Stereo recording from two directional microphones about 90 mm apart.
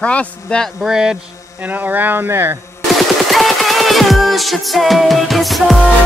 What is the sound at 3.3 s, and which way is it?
Music, centre (ahead or behind).